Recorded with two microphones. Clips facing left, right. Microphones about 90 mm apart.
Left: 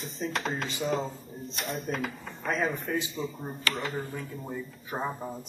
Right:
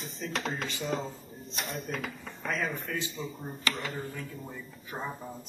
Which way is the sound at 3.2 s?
30° left (ahead or behind).